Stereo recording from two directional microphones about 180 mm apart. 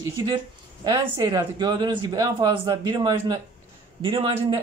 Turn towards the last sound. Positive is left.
turn(degrees=-30)  # may be behind; listen again after turning